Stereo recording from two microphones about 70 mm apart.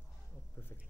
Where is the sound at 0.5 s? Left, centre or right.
Left.